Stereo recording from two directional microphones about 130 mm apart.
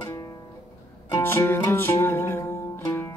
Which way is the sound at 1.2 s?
20° left (ahead or behind).